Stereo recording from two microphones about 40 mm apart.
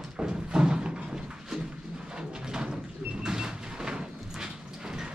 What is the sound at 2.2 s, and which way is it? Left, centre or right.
Sliding door, centre.